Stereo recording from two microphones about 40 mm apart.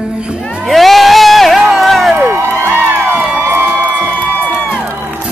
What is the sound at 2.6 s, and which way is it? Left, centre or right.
Music, right.